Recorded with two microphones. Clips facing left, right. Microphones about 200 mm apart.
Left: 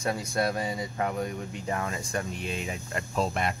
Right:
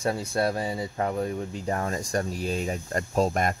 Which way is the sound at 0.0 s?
30° right (ahead or behind).